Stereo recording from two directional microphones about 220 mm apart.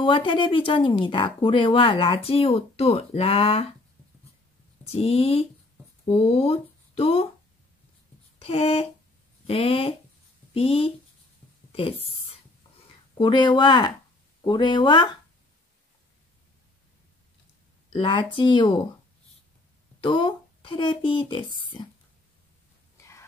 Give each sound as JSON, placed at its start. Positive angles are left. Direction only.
{"t": 0.0, "sound": "speech", "side_deg": 20}
{"t": 4.8, "sound": "speech", "side_deg": 30}
{"t": 8.4, "sound": "a sound", "side_deg": 25}
{"t": 9.5, "sound": "speech", "side_deg": 25}
{"t": 11.7, "sound": "a sound", "side_deg": 25}
{"t": 12.8, "sound": "speech", "side_deg": 20}
{"t": 17.9, "sound": "speech", "side_deg": 20}
{"t": 20.0, "sound": "speech", "side_deg": 20}
{"t": 22.9, "sound": "whispering", "side_deg": 15}